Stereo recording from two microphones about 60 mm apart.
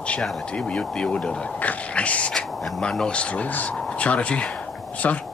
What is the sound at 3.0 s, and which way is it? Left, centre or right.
Speech, centre.